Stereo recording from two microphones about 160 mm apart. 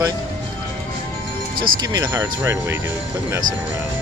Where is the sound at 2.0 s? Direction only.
15° right (ahead or behind).